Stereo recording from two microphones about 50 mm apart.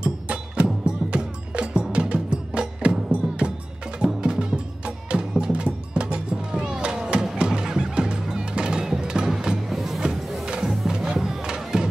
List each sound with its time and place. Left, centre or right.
0.0 s music: centre